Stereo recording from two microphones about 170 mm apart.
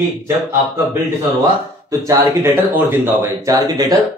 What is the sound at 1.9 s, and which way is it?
Speech, 15° right (ahead or behind).